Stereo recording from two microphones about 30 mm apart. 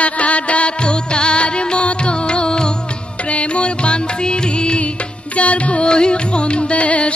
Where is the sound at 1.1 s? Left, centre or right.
Left.